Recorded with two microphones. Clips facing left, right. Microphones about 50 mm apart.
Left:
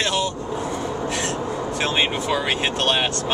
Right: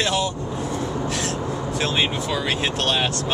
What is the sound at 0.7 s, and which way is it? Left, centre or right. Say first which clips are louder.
Vehicle: even; centre.